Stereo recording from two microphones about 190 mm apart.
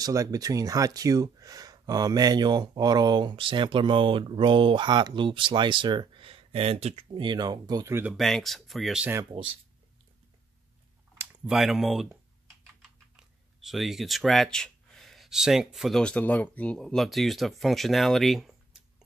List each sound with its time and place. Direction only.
0.0 s speech: 20° right (ahead or behind)
11.1 s speech: 5° right (ahead or behind)